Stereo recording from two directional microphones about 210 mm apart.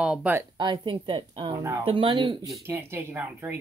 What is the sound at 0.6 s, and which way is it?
Speech, 20° right (ahead or behind).